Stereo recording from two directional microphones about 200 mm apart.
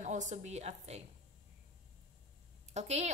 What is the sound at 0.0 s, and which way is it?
A woman's voice, 35° right (ahead or behind).